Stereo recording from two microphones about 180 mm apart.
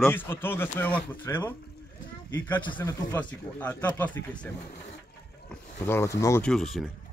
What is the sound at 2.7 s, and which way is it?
Speech, 10° left (ahead or behind).